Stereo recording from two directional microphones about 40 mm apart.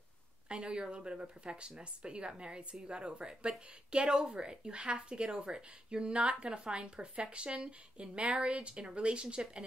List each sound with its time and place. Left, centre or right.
0.5 s speech: right